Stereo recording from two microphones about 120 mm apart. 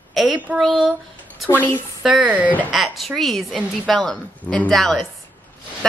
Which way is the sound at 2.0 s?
10° right (ahead or behind).